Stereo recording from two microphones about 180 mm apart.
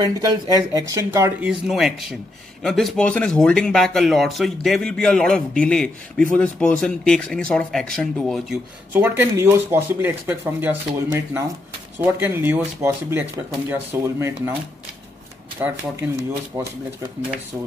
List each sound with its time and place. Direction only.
0.0 s speech: 20° right (ahead or behind)
1.5 s speech: centre (ahead or behind)
8.9 s speech: 10° right (ahead or behind)
15.6 s speech: 10° right (ahead or behind)